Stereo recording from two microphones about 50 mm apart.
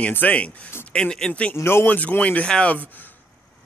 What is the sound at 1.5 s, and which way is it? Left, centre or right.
Speech, left.